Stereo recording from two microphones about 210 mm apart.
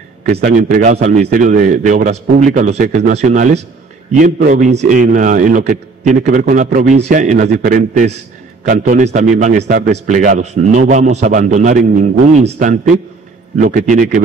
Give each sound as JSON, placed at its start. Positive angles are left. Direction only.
{"t": 0.2, "sound": "a man's voice", "side_deg": -45}
{"t": 0.9, "sound": "a man's voice", "side_deg": -30}